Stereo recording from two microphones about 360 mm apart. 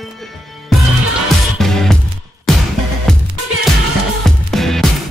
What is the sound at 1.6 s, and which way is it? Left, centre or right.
Music, centre.